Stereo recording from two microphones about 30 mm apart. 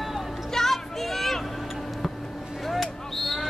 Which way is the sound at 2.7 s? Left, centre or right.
Centre.